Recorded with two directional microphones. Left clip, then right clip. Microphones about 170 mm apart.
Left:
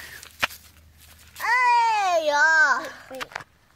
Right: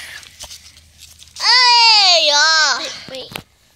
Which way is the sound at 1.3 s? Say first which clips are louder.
Right 9 dB; 5° left (ahead or behind).